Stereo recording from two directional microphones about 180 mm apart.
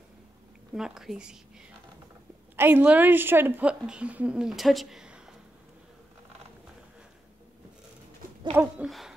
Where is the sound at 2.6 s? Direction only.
10° right (ahead or behind).